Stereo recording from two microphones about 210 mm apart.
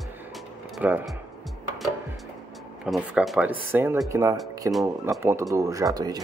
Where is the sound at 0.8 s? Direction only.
5° right (ahead or behind).